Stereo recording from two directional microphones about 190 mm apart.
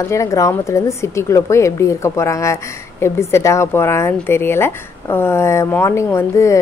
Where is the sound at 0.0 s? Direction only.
15° left (ahead or behind).